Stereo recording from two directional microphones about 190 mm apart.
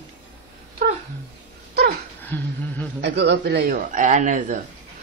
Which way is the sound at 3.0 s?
65° right (ahead or behind).